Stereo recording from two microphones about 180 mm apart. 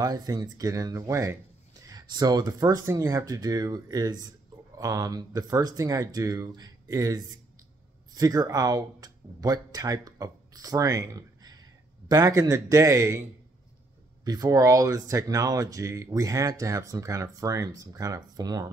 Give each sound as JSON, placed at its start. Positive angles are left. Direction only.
{"t": 0.0, "sound": "speech", "side_deg": -20}
{"t": 14.2, "sound": "speech", "side_deg": -20}